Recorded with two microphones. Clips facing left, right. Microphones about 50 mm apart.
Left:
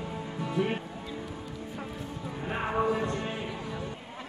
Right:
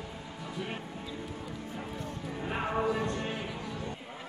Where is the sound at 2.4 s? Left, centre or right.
Centre.